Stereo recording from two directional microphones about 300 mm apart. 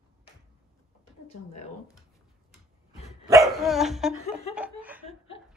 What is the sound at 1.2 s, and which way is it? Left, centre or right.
Speech, left.